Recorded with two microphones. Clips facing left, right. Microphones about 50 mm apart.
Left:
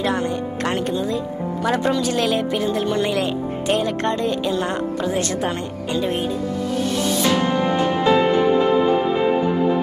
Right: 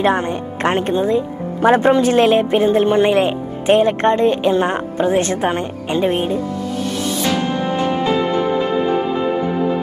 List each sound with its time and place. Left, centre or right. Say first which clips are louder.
0.0 s speech: right 4 dB; right